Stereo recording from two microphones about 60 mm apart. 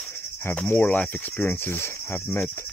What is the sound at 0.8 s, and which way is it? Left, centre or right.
Speech, left.